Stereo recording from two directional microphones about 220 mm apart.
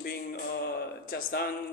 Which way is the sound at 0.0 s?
45° left (ahead or behind).